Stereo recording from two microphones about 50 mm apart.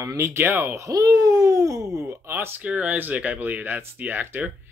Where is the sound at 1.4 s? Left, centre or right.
Right.